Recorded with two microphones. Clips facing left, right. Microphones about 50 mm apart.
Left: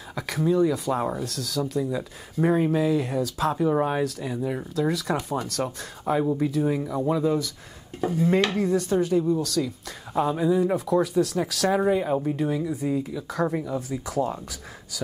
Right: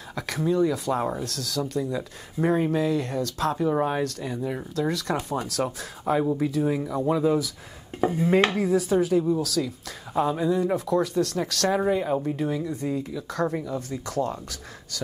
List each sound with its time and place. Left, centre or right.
0.1 s speech: centre
8.0 s cutlery: centre
8.5 s speech: centre